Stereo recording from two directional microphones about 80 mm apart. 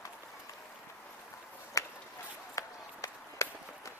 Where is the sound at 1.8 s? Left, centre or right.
Left.